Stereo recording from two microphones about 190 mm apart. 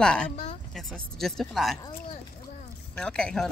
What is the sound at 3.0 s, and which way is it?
Speech, 5° left (ahead or behind).